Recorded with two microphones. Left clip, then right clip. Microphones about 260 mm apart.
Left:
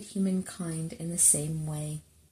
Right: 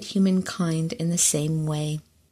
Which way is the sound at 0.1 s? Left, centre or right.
Right.